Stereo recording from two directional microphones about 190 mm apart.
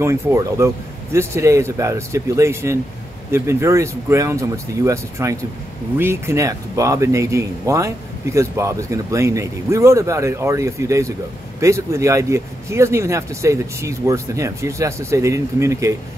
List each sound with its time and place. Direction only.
0.0 s speech: 15° right (ahead or behind)